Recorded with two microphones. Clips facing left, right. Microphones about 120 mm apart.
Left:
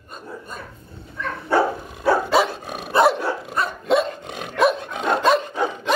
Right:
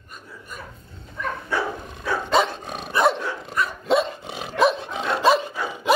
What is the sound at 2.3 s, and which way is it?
Dog, 5° left (ahead or behind).